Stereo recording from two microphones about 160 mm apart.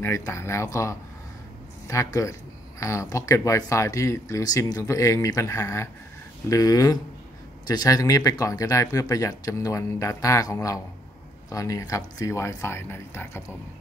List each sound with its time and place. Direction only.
0.0 s speech: 15° left (ahead or behind)